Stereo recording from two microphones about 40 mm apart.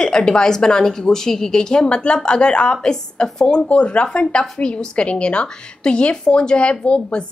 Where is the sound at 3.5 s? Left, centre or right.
Left.